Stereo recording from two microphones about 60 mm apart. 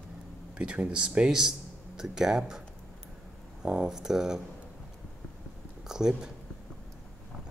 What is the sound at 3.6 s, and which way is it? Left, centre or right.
Speech, centre.